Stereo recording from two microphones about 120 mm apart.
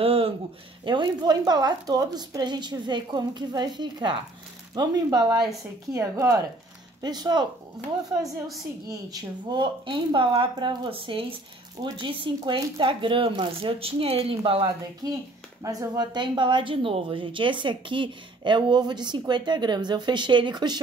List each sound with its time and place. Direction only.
0.0 s speech: 55° right (ahead or behind)
0.8 s speech: 40° right (ahead or behind)
8.8 s speech: 35° right (ahead or behind); by 14.7 s 50° right (ahead or behind)
15.0 s speech: 30° right (ahead or behind)